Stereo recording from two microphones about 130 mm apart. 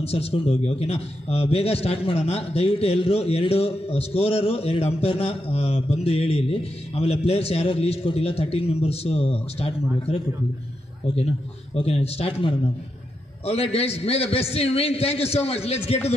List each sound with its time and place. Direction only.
0.0 s a man's voice: 50° left (ahead or behind)
11.1 s a man's voice: 50° left (ahead or behind)